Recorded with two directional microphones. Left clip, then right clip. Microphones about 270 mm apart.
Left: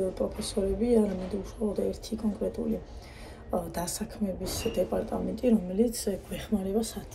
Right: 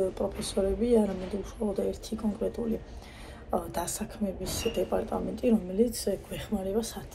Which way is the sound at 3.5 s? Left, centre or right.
Centre.